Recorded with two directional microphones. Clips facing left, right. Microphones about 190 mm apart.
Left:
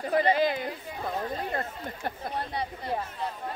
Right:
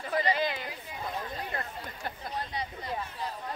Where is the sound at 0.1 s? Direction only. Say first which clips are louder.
Left 5 dB; 50° left (ahead or behind).